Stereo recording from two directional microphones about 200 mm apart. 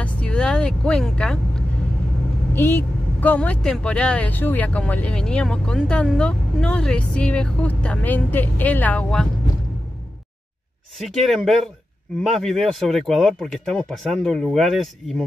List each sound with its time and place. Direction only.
0.0 s vehicle: 5° left (ahead or behind)
2.5 s speech: 10° left (ahead or behind)
11.0 s speech: centre (ahead or behind)